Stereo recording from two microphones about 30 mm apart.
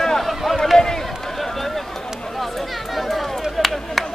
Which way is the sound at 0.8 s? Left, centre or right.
Left.